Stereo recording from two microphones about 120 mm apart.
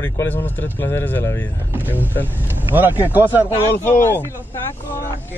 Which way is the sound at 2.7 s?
15° right (ahead or behind).